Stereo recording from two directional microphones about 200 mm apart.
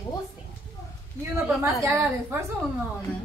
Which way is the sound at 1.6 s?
10° right (ahead or behind).